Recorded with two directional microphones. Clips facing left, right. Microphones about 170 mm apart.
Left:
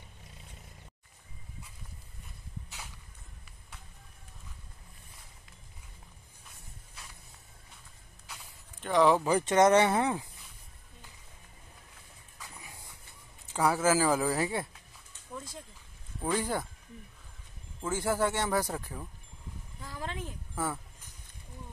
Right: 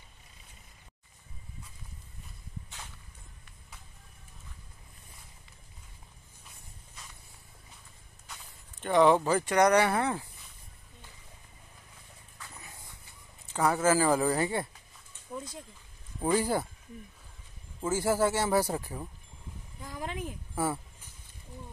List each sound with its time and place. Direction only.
8.8 s speech: centre (ahead or behind)
9.2 s speech: 20° left (ahead or behind)
12.4 s shuffle: 15° left (ahead or behind)
13.5 s speech: 10° left (ahead or behind)
15.3 s a sound: 15° right (ahead or behind)
16.2 s speech: 5° right (ahead or behind)
17.7 s speech: 5° right (ahead or behind)
19.8 s a sound: 15° right (ahead or behind)